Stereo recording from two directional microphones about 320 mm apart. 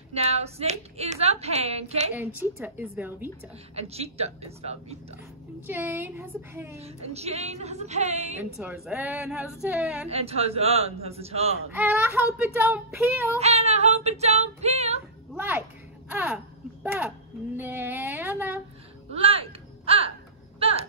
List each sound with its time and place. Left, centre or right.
0.1 s speech: centre
2.1 s a woman's voice: centre
3.7 s speech: centre
5.7 s speech: centre
7.1 s speech: centre
8.5 s a woman's voice: centre
10.0 s speech: centre
11.7 s speech: centre
13.4 s speech: centre
15.3 s a child's voice: centre
19.1 s music: centre
20.5 s a sound: centre